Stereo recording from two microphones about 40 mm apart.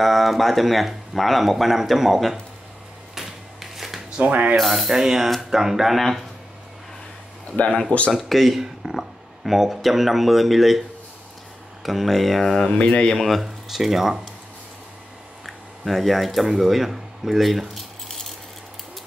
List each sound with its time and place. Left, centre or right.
0.0 s speech: centre
3.2 s a sound: centre
4.2 s mechanisms: right
4.6 s speech: centre
7.5 s speech: left
8.1 s speech: centre
13.4 s speech: centre
15.4 s a sound: centre
16.4 s speech: centre